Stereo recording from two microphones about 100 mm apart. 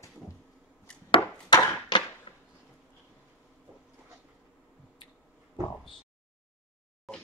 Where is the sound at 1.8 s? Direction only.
50° left (ahead or behind).